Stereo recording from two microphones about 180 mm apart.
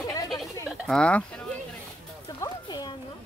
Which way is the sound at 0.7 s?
Centre (ahead or behind).